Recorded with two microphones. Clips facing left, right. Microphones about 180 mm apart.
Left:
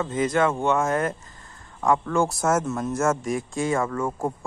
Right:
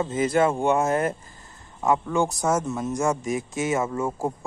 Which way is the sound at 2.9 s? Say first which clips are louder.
Left 1 dB; 15° right (ahead or behind).